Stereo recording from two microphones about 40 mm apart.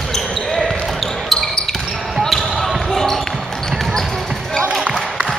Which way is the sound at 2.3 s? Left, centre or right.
Centre.